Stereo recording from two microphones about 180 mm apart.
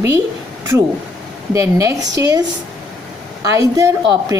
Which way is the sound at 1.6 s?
15° right (ahead or behind).